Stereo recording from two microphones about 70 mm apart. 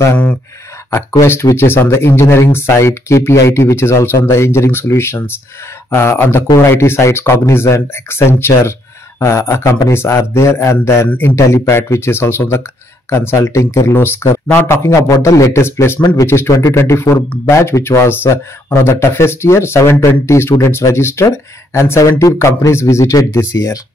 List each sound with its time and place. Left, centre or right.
1.2 s a man's voice: left
11.1 s speech: left
11.3 s speech: left
14.7 s a man's voice: left
15.6 s a man's voice: left